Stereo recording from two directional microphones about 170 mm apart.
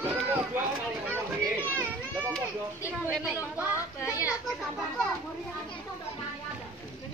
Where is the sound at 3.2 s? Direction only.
10° right (ahead or behind).